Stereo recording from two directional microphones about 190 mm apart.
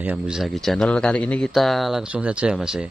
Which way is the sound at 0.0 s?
5° right (ahead or behind).